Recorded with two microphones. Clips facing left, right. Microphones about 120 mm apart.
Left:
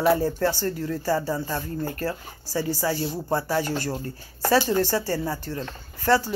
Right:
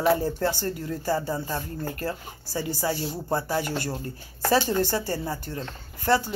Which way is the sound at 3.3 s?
15° right (ahead or behind).